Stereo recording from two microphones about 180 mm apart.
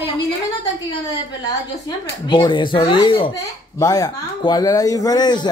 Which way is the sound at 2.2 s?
25° left (ahead or behind).